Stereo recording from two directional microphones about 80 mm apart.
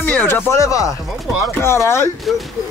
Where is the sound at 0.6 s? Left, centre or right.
Left.